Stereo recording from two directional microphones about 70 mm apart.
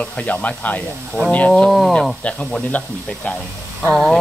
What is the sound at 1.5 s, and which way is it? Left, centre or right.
Rub, centre.